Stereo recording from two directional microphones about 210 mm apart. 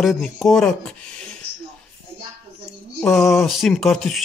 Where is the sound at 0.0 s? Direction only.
Centre (ahead or behind).